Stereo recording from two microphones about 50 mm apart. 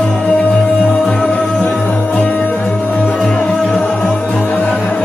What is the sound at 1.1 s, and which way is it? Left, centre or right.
Music, left.